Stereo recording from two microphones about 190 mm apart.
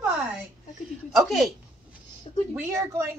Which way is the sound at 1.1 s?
Centre (ahead or behind).